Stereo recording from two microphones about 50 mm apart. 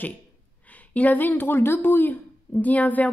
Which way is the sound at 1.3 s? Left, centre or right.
Left.